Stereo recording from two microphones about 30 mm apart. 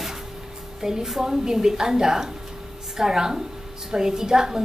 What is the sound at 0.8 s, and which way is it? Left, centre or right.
A woman's voice, centre.